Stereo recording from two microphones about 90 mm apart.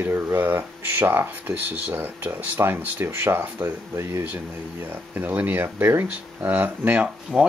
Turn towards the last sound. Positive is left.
turn(degrees=-10)  # may be behind; listen again after turning